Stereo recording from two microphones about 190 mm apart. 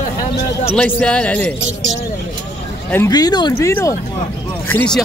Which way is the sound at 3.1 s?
20° left (ahead or behind).